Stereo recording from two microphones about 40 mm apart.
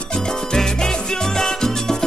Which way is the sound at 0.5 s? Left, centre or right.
Centre.